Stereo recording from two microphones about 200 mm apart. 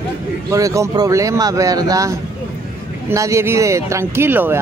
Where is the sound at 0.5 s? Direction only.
15° right (ahead or behind).